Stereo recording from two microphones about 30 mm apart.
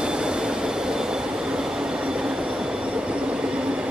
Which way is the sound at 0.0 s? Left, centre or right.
Right.